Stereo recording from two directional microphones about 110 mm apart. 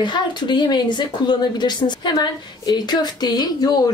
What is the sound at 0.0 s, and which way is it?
Speech, 45° left (ahead or behind).